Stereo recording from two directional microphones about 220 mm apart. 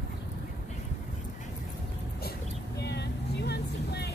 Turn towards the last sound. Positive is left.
turn(degrees=50)  # may be behind; listen again after turning